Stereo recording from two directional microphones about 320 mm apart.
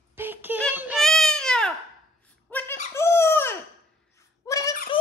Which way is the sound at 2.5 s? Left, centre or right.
Centre.